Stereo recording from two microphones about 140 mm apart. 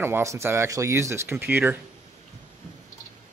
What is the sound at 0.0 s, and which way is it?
Speech, 20° right (ahead or behind).